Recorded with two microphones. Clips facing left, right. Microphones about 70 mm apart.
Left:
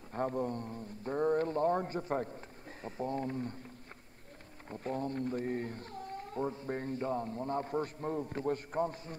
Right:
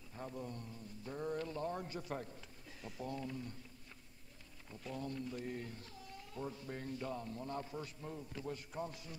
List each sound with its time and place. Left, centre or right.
0.1 s speech: left
4.6 s speech: left